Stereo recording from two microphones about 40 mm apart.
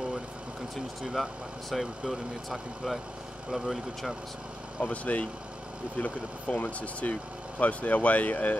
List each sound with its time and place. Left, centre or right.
1.0 s speech: centre
4.8 s speech: left